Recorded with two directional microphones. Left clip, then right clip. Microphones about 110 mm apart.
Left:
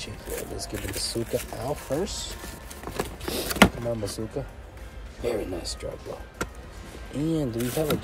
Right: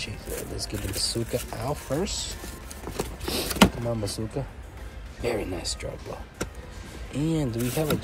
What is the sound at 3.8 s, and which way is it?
Speech, 25° left (ahead or behind).